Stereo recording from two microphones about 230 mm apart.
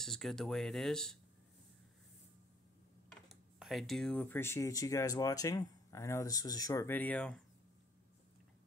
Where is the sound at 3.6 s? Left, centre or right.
Centre.